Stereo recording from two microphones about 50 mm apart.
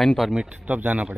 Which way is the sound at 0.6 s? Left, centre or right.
Right.